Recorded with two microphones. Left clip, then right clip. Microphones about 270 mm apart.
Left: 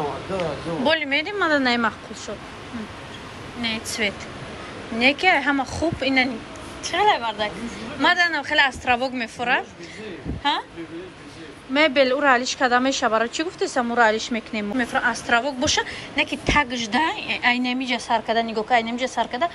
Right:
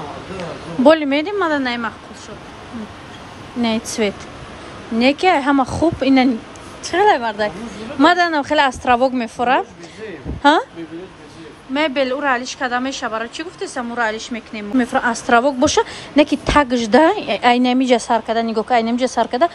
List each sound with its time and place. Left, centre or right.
0.8 s speech: centre
3.6 s a woman's voice: centre
11.7 s speech: centre
14.8 s a woman's voice: centre
18.2 s speech: centre